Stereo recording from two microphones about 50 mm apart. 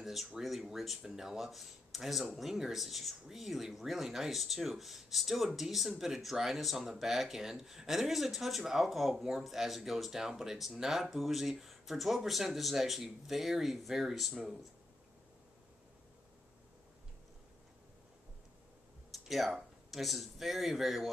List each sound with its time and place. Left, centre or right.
0.0 s speech: centre
19.1 s speech: centre